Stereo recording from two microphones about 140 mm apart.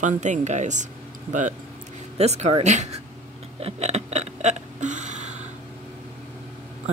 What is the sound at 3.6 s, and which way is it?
Hiccup, 50° right (ahead or behind).